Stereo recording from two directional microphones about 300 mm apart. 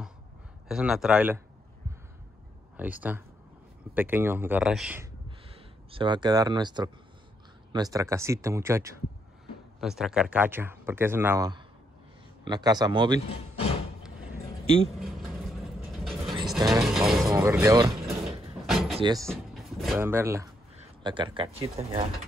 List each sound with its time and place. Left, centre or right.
0.7 s speech: centre
2.8 s speech: centre
5.9 s speech: centre
15.0 s vehicle: centre
16.6 s a sound: centre
18.7 s cupboard open or close: centre
18.9 s speech: centre
19.2 s speech: centre